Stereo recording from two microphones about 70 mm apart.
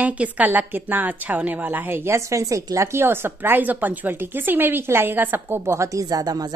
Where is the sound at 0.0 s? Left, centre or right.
Right.